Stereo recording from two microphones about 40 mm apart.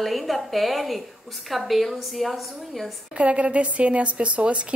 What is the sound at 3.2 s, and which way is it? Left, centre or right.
A woman's voice, right.